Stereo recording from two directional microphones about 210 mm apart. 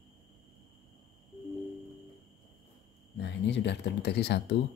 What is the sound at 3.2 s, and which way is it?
Speech, 55° left (ahead or behind).